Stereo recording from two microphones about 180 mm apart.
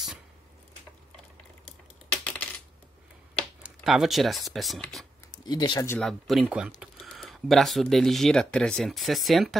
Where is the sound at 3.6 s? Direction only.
Centre (ahead or behind).